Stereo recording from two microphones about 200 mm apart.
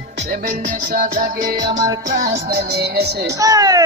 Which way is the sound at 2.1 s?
45° right (ahead or behind).